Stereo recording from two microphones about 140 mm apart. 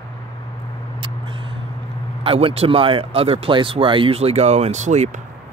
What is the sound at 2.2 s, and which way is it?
Speech, 40° right (ahead or behind).